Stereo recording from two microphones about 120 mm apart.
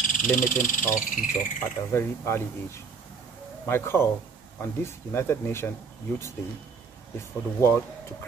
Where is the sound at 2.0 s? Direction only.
20° left (ahead or behind).